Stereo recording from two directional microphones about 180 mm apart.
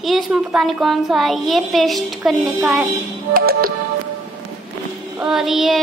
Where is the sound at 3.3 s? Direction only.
55° right (ahead or behind).